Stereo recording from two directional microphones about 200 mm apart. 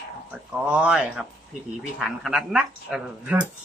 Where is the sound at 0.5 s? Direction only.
5° right (ahead or behind).